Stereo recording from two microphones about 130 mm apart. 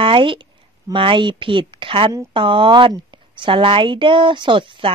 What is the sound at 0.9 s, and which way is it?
A woman's voice, 40° right (ahead or behind).